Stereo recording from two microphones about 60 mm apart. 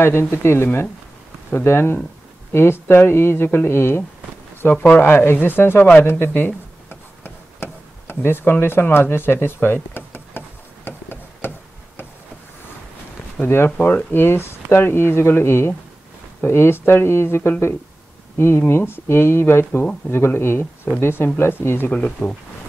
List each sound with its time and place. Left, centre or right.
0.0 s speech: left
6.0 s a sound: left
13.4 s speech: left
21.9 s speech: left